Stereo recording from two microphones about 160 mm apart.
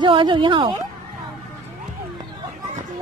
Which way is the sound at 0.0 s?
30° right (ahead or behind).